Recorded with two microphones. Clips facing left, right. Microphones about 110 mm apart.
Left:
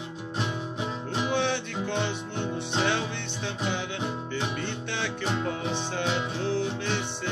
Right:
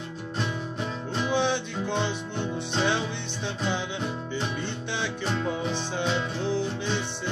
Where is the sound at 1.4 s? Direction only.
15° right (ahead or behind).